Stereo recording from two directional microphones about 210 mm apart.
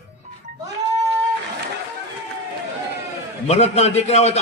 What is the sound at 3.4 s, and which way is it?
Speech, 30° left (ahead or behind).